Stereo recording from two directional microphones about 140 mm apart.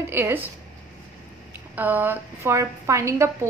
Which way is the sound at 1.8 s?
10° right (ahead or behind).